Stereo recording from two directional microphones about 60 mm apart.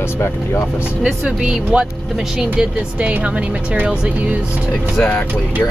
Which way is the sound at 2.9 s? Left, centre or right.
Right.